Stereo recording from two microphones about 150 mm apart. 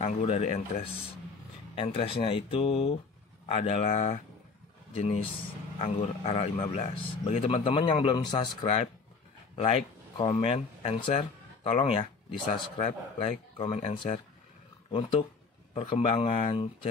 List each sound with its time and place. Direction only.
0.0 s a man's voice: 45° left (ahead or behind)
1.8 s a man's voice: 40° left (ahead or behind)